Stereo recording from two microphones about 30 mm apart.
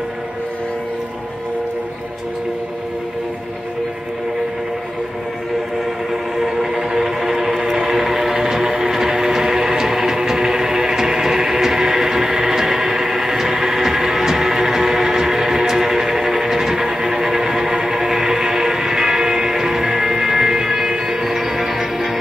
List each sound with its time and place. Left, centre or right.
6.3 s music: centre